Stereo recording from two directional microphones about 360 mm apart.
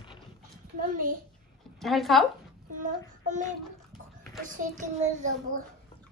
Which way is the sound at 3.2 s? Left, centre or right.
Right.